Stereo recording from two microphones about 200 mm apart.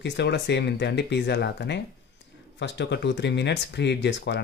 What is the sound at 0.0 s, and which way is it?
Speech, 60° left (ahead or behind).